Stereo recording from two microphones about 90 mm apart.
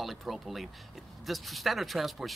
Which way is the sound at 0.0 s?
Centre (ahead or behind).